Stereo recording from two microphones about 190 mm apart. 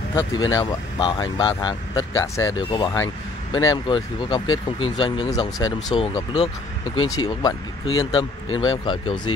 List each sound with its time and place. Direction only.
0.1 s speech: 20° left (ahead or behind)